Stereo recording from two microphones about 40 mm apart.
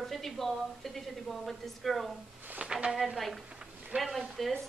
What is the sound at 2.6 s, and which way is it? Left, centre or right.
Speech, right.